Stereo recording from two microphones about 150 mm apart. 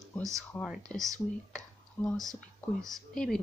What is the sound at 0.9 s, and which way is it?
Speech, 5° left (ahead or behind).